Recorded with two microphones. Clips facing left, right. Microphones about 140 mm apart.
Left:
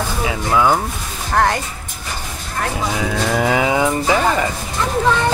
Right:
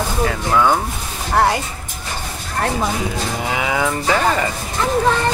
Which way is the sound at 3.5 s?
25° left (ahead or behind).